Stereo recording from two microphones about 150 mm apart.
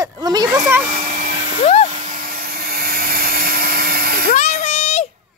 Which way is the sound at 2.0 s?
65° right (ahead or behind).